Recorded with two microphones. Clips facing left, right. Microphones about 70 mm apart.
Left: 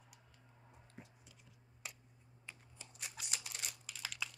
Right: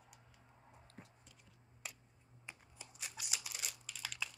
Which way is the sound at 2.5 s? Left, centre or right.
Centre.